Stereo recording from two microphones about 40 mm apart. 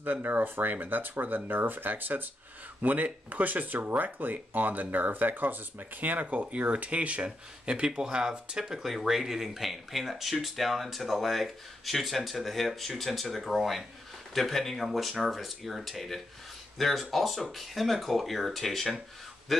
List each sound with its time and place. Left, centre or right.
0.0 s speech: right; by 14.9 s centre
14.9 s speech: centre